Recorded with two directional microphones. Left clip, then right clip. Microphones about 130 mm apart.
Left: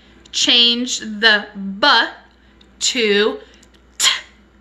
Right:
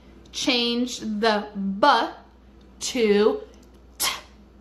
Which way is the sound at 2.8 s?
20° right (ahead or behind).